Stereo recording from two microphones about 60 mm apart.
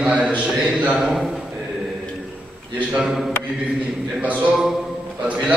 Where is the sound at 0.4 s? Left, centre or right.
Centre.